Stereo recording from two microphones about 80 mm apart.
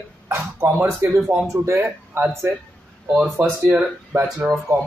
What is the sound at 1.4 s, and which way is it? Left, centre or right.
Speech, right.